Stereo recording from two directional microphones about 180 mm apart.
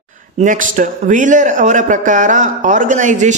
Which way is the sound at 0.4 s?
45° right (ahead or behind).